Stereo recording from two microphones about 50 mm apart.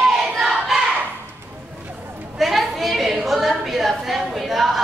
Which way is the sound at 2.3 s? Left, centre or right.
Centre.